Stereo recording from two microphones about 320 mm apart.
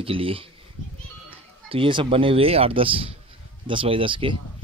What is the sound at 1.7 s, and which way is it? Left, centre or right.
Speech, centre.